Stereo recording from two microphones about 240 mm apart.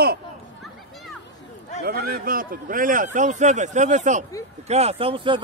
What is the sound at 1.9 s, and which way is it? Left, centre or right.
Speech, right.